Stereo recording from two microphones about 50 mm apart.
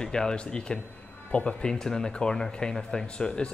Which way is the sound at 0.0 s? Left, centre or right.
Centre.